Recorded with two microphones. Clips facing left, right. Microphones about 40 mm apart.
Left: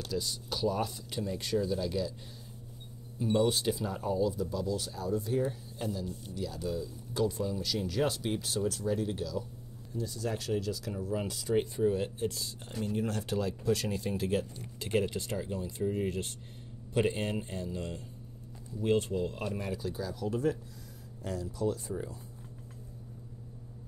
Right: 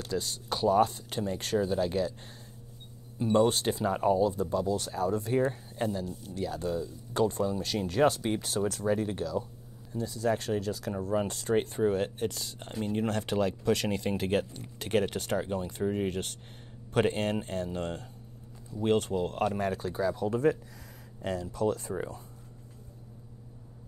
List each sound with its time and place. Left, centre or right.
0.0 s speech: right
1.7 s speech: right
3.2 s speech: right